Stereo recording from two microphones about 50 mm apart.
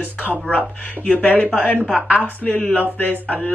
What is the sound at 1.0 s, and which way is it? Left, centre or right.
A woman's voice, left.